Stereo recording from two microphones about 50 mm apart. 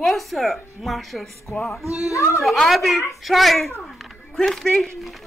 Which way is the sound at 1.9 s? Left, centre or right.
Left.